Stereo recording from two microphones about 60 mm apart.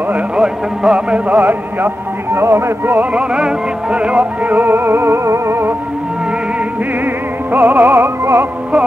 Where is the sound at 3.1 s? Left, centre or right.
Centre; by 5.7 s right.